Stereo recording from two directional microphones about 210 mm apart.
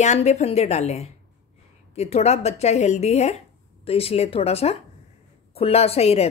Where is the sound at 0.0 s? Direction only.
35° left (ahead or behind).